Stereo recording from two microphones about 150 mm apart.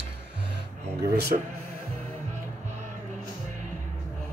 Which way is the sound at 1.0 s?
90° right.